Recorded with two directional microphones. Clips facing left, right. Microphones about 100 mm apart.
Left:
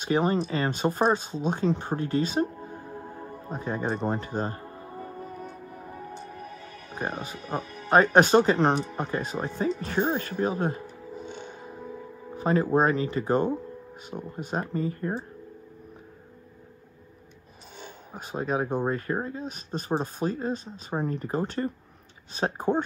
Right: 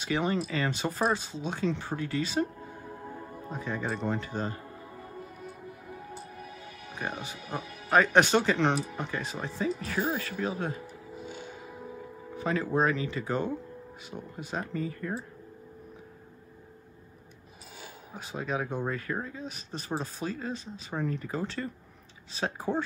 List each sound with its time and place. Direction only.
0.0 s speech: 40° left (ahead or behind)
3.4 s music: 40° left (ahead or behind)
6.3 s speech: 40° left (ahead or behind)
11.1 s music: 5° right (ahead or behind)
12.4 s speech: 40° left (ahead or behind)
18.1 s speech: 45° left (ahead or behind)